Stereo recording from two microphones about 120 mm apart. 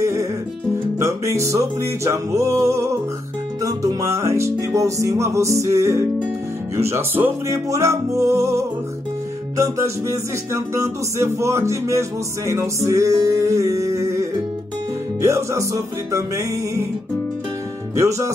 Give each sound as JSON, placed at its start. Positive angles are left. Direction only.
{"t": 0.0, "sound": "music", "side_deg": -25}
{"t": 15.2, "sound": "music", "side_deg": -25}
{"t": 17.9, "sound": "music", "side_deg": -25}